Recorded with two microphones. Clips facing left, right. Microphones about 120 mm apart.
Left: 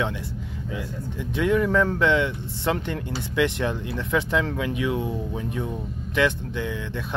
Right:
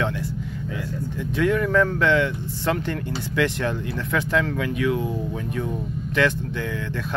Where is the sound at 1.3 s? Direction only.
20° left (ahead or behind).